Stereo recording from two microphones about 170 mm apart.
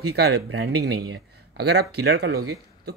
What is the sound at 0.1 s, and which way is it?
A man's voice, 80° right.